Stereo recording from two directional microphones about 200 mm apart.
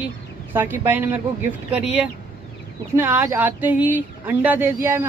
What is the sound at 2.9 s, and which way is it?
Speech, 10° right (ahead or behind).